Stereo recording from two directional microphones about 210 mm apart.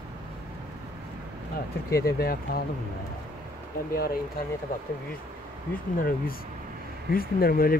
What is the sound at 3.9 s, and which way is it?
Speech, 45° left (ahead or behind).